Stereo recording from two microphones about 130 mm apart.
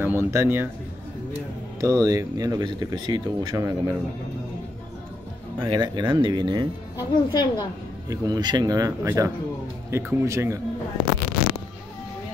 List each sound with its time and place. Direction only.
0.0 s speech: 20° right (ahead or behind)
1.8 s speech: 30° right (ahead or behind)
5.7 s speech: 35° right (ahead or behind)
7.0 s a woman's voice: 35° left (ahead or behind)
8.1 s speech: 30° right (ahead or behind)